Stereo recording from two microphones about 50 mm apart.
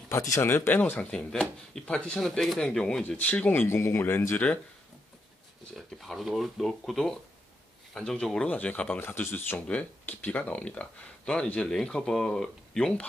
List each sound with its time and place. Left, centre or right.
0.1 s speech: left
0.4 s speech: left
1.1 s speech: centre
2.2 s speech: centre
3.2 s speech: left
3.6 s speech: left
5.8 s speech: centre
8.5 s speech: left
9.0 s speech: left
10.0 s speech: left; by 12.9 s centre